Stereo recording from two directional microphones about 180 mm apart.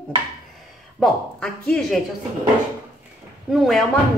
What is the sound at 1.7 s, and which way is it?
Speech, centre (ahead or behind).